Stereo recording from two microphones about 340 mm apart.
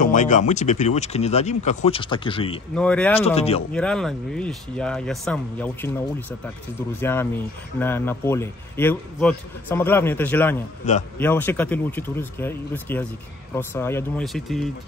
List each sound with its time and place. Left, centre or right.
0.0 s speech: left
2.7 s speech: centre
3.2 s a man's voice: centre
3.7 s speech: centre
7.0 s a man's voice: centre
10.8 s speech: left
11.1 s speech: centre